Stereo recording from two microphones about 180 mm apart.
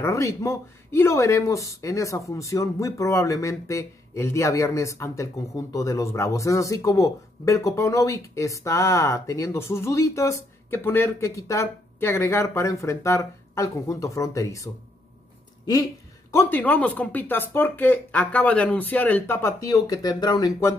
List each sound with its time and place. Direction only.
0.0 s speech: 15° left (ahead or behind)
16.3 s speech: 10° left (ahead or behind)